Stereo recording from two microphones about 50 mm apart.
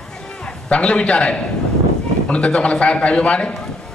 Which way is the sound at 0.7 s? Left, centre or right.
Left.